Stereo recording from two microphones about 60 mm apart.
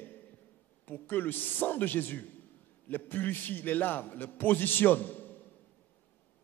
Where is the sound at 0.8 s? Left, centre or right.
Left.